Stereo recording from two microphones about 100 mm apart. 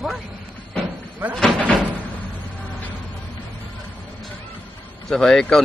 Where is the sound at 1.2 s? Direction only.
15° right (ahead or behind).